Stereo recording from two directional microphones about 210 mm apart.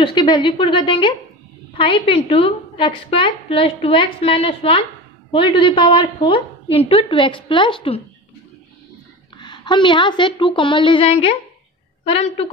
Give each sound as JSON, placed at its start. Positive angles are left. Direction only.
{"t": 0.0, "sound": "a woman's voice", "side_deg": 20}
{"t": 9.4, "sound": "a woman's voice", "side_deg": 20}